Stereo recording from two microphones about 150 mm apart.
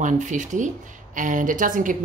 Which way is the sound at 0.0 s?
55° right (ahead or behind).